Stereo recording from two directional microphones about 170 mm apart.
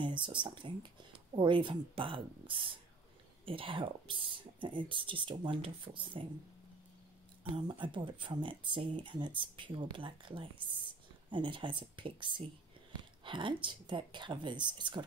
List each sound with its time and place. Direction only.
0.0 s speech: 30° right (ahead or behind)
7.4 s speech: 30° right (ahead or behind)